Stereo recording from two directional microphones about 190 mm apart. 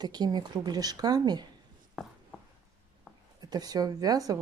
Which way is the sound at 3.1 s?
5° right (ahead or behind).